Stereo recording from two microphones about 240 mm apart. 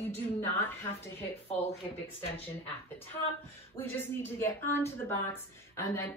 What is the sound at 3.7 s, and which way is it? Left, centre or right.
Speech, centre.